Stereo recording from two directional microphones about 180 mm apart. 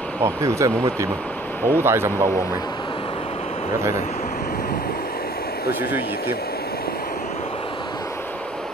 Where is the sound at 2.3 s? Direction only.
15° left (ahead or behind); by 3.8 s 35° left (ahead or behind).